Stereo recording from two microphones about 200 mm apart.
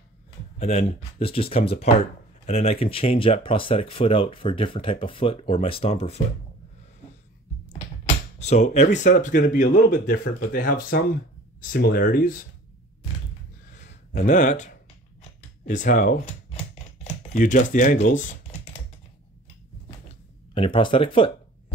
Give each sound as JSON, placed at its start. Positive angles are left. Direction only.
{"t": 0.6, "sound": "speech", "side_deg": 35}
{"t": 8.4, "sound": "speech", "side_deg": 35}
{"t": 14.1, "sound": "speech", "side_deg": 40}
{"t": 16.7, "sound": "typing", "side_deg": 30}
{"t": 20.1, "sound": "a sound", "side_deg": 25}